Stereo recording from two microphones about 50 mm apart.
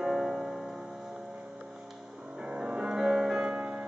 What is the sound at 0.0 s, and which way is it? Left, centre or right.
Music, centre.